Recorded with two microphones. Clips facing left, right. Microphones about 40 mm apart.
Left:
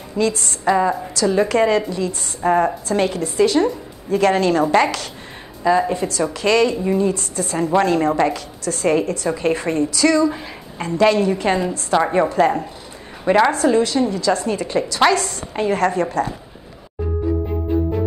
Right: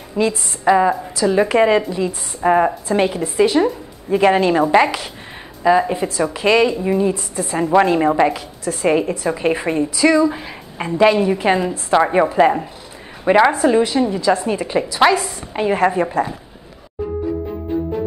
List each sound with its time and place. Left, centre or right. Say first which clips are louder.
0.1 s a woman's voice: right 1 dB; centre